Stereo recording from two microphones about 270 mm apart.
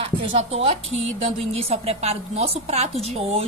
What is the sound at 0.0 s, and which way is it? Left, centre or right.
A woman's voice, centre.